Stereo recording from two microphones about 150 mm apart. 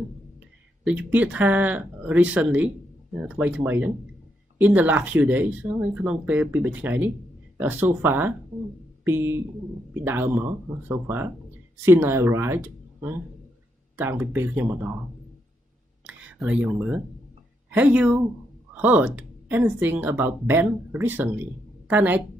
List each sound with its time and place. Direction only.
0.8 s speech: 10° right (ahead or behind)
16.1 s speech: 10° right (ahead or behind)